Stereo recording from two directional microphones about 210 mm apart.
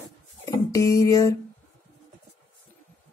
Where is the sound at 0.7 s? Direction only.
15° left (ahead or behind).